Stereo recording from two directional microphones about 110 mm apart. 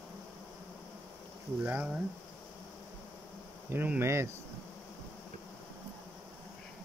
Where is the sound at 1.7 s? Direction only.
10° right (ahead or behind).